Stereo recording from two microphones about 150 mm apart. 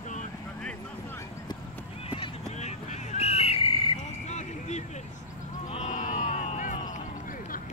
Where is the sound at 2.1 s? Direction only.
45° left (ahead or behind).